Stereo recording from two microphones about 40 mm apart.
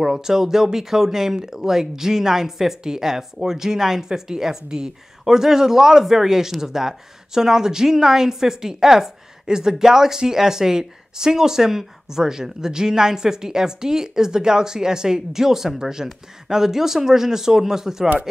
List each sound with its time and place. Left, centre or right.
0.0 s speech: centre